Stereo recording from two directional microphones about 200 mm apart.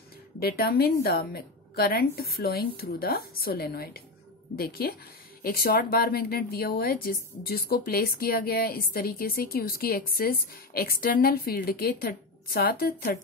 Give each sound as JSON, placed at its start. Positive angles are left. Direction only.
{"t": 0.4, "sound": "a woman's voice", "side_deg": 50}